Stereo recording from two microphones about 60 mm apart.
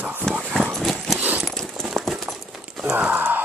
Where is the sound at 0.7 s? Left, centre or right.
Centre.